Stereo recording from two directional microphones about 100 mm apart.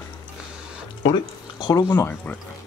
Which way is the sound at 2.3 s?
15° left (ahead or behind).